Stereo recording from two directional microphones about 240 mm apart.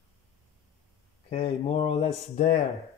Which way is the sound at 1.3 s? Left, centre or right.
Left.